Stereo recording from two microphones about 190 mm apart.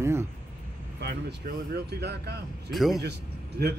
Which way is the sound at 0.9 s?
60° right (ahead or behind).